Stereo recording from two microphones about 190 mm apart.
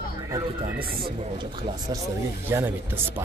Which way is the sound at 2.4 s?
10° right (ahead or behind).